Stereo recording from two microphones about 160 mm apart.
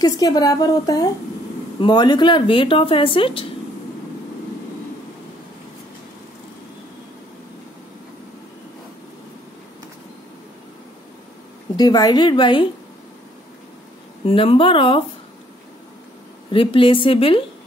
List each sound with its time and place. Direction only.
0.0 s a woman's voice: 25° left (ahead or behind)
11.7 s a woman's voice: 25° left (ahead or behind)
14.2 s speech: 35° left (ahead or behind)
16.4 s speech: 35° left (ahead or behind)